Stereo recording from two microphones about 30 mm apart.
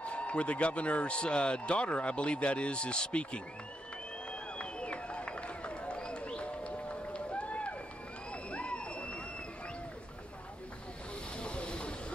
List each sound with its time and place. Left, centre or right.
0.0 s a man's voice: left
4.3 s a sound: left
7.2 s run: left
8.3 s crowd: left
11.3 s vehicle: left